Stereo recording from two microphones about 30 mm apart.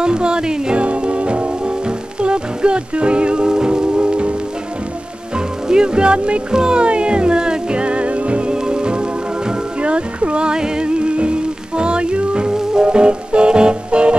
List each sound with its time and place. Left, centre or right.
0.0 s music: right
0.7 s music: right
5.7 s speech: right
6.5 s music: right
8.5 s music: right
10.5 s music: right